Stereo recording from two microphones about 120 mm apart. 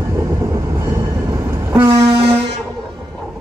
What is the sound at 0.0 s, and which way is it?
Train, 25° right (ahead or behind).